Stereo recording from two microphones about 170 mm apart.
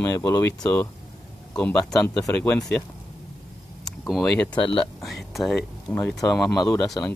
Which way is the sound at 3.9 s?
Centre (ahead or behind).